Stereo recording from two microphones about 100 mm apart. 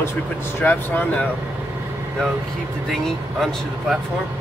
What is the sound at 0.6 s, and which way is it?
Speech, 15° left (ahead or behind).